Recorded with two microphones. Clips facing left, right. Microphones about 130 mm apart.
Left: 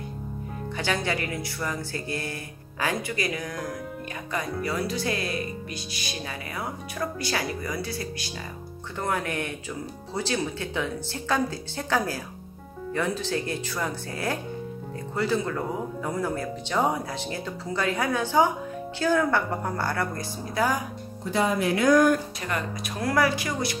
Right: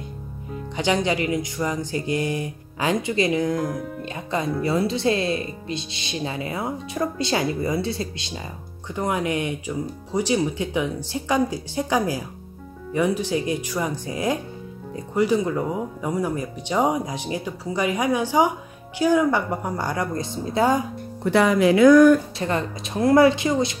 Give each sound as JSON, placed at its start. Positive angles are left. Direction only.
{"t": 0.7, "sound": "speech", "side_deg": -20}
{"t": 21.2, "sound": "speech", "side_deg": -70}
{"t": 22.4, "sound": "speech", "side_deg": -25}